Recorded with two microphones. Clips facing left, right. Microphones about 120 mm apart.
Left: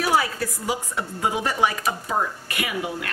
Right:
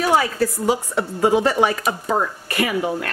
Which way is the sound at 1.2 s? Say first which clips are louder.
Right 6 dB; 40° right (ahead or behind).